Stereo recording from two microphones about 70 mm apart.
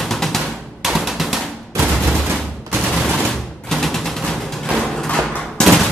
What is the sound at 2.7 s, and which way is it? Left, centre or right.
Machine gun, centre.